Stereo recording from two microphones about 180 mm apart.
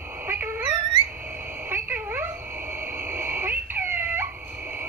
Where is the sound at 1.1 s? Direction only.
10° right (ahead or behind).